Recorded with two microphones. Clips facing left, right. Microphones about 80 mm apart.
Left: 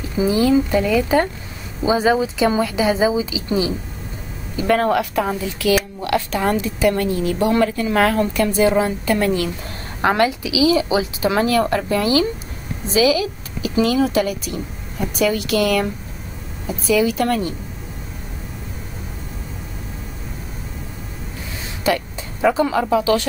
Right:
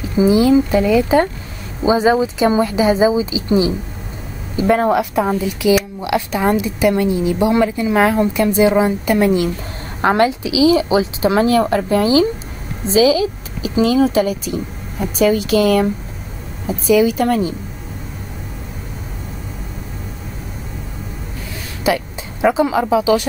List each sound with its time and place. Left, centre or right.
0.2 s speech: centre
21.8 s speech: centre